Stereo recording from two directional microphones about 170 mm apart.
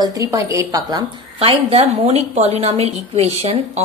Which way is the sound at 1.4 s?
35° right (ahead or behind).